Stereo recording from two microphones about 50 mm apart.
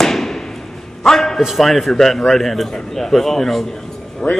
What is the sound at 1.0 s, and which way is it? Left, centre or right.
A man's voice, centre.